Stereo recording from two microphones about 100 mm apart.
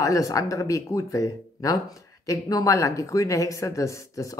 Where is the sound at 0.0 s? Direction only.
35° left (ahead or behind).